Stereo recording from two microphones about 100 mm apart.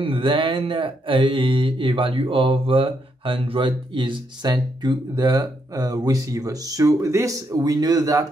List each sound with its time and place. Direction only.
0.0 s speech: 60° right (ahead or behind); by 8.3 s 40° right (ahead or behind)